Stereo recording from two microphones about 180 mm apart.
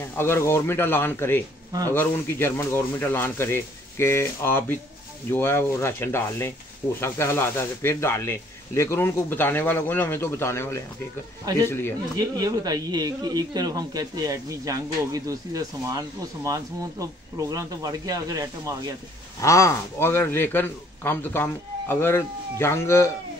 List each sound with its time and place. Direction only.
0.1 s speech: 15° left (ahead or behind)
1.7 s speech: 20° right (ahead or behind)
2.0 s speech: 10° left (ahead or behind)
12.2 s a man's voice: 20° right (ahead or behind)
19.4 s speech: 15° left (ahead or behind)